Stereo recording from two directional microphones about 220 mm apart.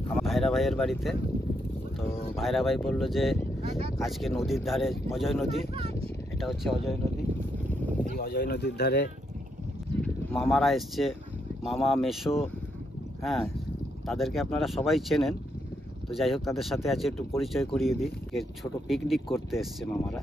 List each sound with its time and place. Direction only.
0.2 s speech: centre (ahead or behind)
3.6 s a sound: 30° right (ahead or behind)
4.6 s speech: centre (ahead or behind)
5.5 s speech: 30° right (ahead or behind)
6.4 s speech: centre (ahead or behind)
8.0 s speech: 45° left (ahead or behind)
10.0 s speech: centre (ahead or behind)